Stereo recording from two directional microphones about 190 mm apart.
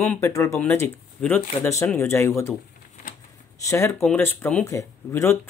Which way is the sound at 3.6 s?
15° left (ahead or behind).